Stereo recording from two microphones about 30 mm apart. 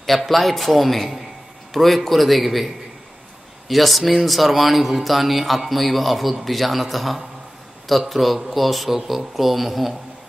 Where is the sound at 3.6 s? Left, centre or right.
Centre.